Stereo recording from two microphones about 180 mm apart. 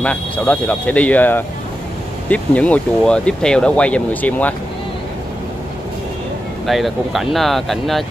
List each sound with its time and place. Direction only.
0.0 s speech: 5° left (ahead or behind)
6.6 s speech: centre (ahead or behind)